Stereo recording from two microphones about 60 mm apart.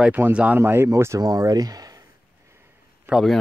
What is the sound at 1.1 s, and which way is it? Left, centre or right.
Speech, right.